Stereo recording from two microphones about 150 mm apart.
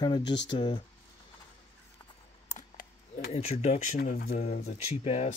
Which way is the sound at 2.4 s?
65° left (ahead or behind).